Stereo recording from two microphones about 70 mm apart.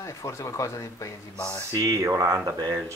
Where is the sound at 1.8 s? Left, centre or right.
Right.